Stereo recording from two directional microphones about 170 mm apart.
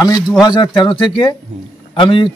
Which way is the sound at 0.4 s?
25° left (ahead or behind).